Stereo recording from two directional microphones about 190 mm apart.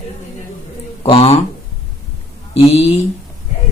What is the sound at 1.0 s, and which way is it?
Speech, 30° left (ahead or behind).